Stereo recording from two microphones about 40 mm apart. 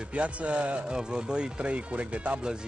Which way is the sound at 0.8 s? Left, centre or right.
Centre.